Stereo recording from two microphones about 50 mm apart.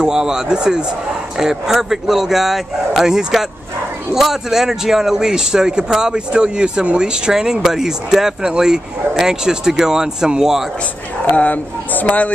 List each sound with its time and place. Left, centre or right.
0.0 s speech: centre
11.2 s speech: left